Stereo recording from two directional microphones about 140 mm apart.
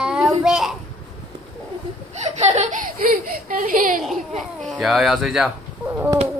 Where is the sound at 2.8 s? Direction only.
85° right.